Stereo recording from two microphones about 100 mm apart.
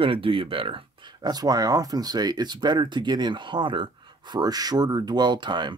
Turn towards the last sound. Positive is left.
turn(degrees=-50)  # may be behind; listen again after turning